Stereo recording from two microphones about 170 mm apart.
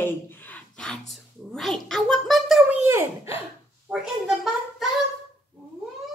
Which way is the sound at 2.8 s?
15° right (ahead or behind).